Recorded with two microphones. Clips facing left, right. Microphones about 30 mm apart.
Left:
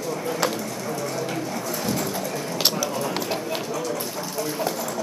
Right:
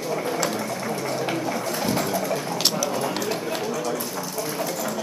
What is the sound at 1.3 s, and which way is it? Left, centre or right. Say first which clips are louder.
Pigeon: right 2 dB; centre.